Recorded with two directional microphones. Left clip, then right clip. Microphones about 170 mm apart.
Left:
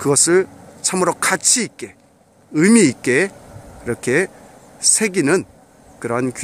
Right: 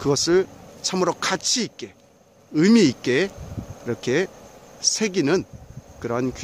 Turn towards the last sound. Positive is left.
turn(degrees=5)  # may be behind; listen again after turning